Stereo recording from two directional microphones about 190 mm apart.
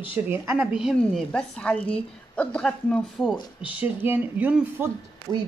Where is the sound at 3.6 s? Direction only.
5° right (ahead or behind).